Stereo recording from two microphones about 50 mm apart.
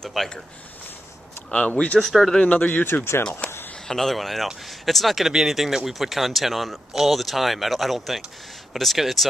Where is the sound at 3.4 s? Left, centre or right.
Left.